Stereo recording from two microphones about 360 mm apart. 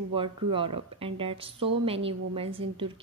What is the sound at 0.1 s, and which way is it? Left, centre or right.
Speech, centre.